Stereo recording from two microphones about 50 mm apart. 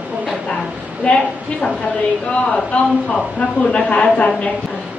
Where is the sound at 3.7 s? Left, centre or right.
Left.